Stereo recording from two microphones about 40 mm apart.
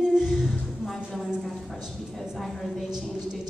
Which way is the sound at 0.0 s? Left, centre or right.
Centre.